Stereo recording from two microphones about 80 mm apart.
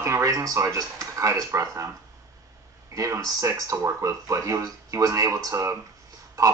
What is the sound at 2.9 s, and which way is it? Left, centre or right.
Speech, right.